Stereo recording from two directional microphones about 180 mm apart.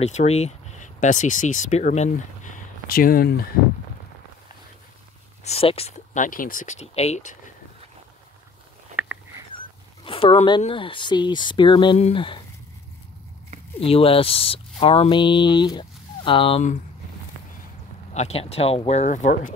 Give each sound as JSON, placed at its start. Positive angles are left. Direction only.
{"t": 0.0, "sound": "speech", "side_deg": 35}
{"t": 5.4, "sound": "speech", "side_deg": 35}
{"t": 8.9, "sound": "a sound", "side_deg": -10}
{"t": 9.5, "sound": "a sound", "side_deg": 30}
{"t": 10.7, "sound": "speech", "side_deg": 30}
{"t": 13.7, "sound": "speech", "side_deg": 30}
{"t": 18.1, "sound": "speech", "side_deg": 35}